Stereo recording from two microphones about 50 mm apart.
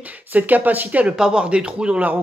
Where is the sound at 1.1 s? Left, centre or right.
Centre.